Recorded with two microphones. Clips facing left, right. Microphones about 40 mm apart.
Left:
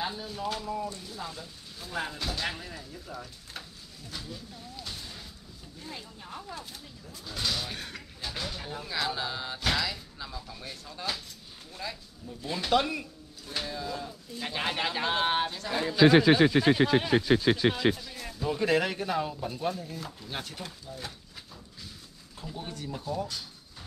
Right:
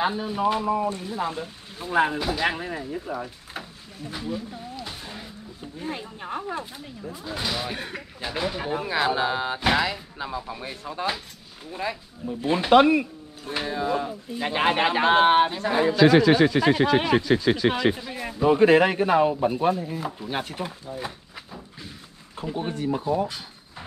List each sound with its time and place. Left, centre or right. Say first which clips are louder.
0.0 s speech: right 10 dB; right
2.1 s speech: right 9 dB; centre; by 6.6 s right
6.6 s speech: right 9 dB; right
16.0 s speech: right 2 dB; centre
17.9 s speech: right 9 dB; right
22.4 s speech: right 11 dB; right